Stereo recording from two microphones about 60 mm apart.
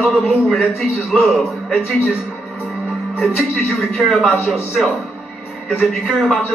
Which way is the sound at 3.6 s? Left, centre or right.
Centre.